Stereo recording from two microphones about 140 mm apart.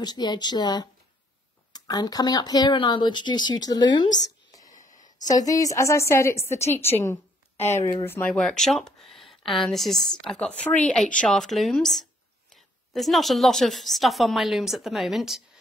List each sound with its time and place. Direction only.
0.0 s a woman's voice: 30° left (ahead or behind)
4.7 s a sound: 65° left (ahead or behind)
5.3 s a woman's voice: 25° left (ahead or behind)
8.4 s a woman's voice: 5° left (ahead or behind)